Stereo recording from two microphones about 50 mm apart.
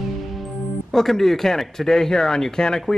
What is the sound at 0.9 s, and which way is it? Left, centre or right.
Speech, centre.